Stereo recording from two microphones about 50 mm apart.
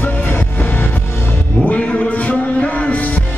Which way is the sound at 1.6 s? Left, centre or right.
Left.